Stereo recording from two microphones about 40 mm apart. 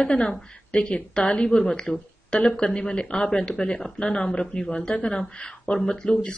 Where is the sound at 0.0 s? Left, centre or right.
Left.